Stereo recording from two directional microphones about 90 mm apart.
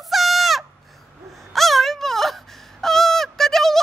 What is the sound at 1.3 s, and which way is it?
Wail, centre (ahead or behind).